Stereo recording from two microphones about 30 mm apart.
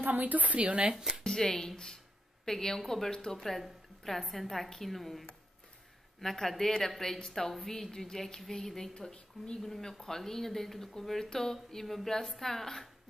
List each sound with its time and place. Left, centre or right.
0.0 s a woman's voice: right
0.6 s speech: right
1.2 s a woman's voice: left; by 5.2 s centre
6.2 s speech: centre